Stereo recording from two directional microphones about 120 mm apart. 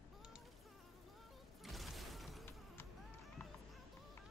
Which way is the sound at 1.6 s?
Centre (ahead or behind).